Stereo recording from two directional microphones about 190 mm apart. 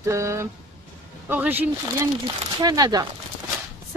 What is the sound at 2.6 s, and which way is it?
Speech, 20° right (ahead or behind).